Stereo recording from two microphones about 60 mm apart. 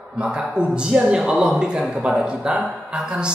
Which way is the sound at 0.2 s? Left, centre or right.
Centre.